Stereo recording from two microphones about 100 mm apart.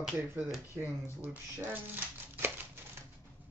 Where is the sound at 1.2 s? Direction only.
15° right (ahead or behind).